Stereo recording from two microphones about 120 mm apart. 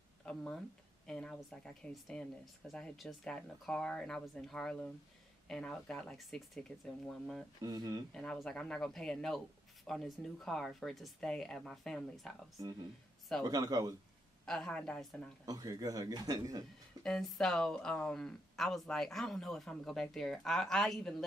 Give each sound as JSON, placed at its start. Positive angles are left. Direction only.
{"t": 0.2, "sound": "speech", "side_deg": 10}
{"t": 7.6, "sound": "a man's voice", "side_deg": -35}
{"t": 8.1, "sound": "speech", "side_deg": 5}
{"t": 13.4, "sound": "a man's voice", "side_deg": -35}
{"t": 14.4, "sound": "speech", "side_deg": 5}
{"t": 15.4, "sound": "a man's voice", "side_deg": -30}
{"t": 17.0, "sound": "speech", "side_deg": 5}